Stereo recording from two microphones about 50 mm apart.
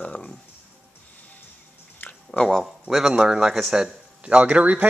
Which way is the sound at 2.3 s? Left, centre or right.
Left.